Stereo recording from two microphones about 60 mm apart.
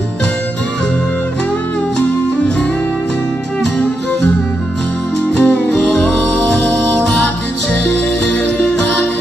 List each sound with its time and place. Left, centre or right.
5.3 s music: left
8.3 s music: left